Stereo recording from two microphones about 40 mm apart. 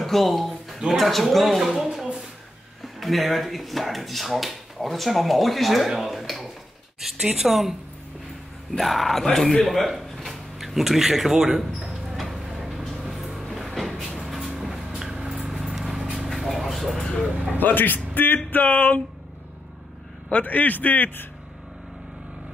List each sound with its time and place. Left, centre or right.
0.0 s a sound: centre
0.9 s speech: centre
7.2 s speech: centre
8.7 s speech: centre
9.8 s a sound: centre
16.2 s vehicle: centre
17.6 s speech: left
20.4 s speech: left